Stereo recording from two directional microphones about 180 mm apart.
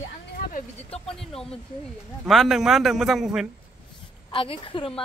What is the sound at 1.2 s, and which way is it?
Speech, 5° left (ahead or behind).